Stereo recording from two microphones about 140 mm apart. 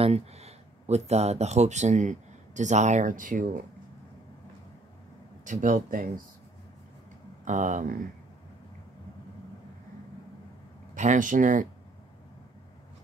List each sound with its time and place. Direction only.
0.0 s speech: 50° right (ahead or behind); by 3.6 s 75° right (ahead or behind)
5.4 s speech: 65° right (ahead or behind)
7.4 s speech: 65° right (ahead or behind)
11.0 s speech: 65° right (ahead or behind)